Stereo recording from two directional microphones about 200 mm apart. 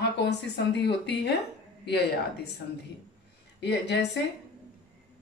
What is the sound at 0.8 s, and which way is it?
Speech, 60° left (ahead or behind).